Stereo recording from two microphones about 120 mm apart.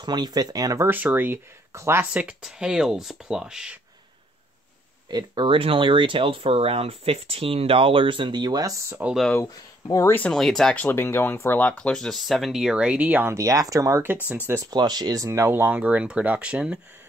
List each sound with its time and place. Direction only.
0.0 s speech: 35° right (ahead or behind)
0.8 s speech: 15° right (ahead or behind)
2.2 s speech: 5° right (ahead or behind)
5.1 s speech: 40° right (ahead or behind)
9.4 s speech: 25° left (ahead or behind)
10.1 s speech: 5° left (ahead or behind); by 14.6 s 15° right (ahead or behind)
14.6 s speech: 35° right (ahead or behind); by 16.8 s 10° right (ahead or behind)